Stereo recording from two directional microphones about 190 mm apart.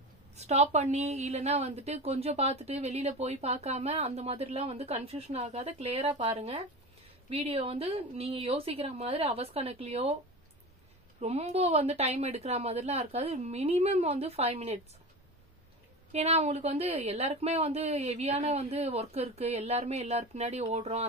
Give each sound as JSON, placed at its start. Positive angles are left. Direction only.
{"t": 0.4, "sound": "a woman's voice", "side_deg": -35}
{"t": 11.1, "sound": "a woman's voice", "side_deg": -35}
{"t": 16.1, "sound": "a woman's voice", "side_deg": -35}